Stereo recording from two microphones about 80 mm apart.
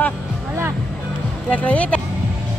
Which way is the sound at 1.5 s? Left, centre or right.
Centre.